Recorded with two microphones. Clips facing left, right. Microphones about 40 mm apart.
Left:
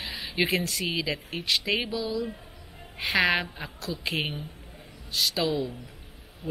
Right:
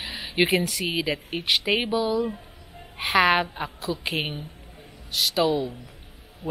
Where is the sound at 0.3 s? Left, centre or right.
Right.